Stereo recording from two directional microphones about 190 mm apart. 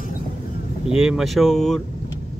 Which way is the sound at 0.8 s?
5° right (ahead or behind).